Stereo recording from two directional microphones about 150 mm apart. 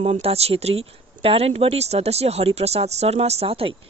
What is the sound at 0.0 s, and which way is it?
Speech, 40° right (ahead or behind).